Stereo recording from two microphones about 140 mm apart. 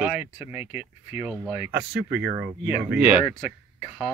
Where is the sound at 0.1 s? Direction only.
45° left (ahead or behind).